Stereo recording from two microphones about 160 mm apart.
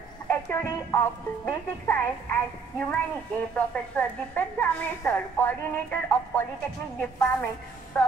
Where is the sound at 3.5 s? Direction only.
10° left (ahead or behind).